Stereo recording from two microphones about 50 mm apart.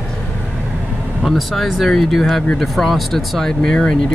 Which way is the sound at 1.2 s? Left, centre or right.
Centre.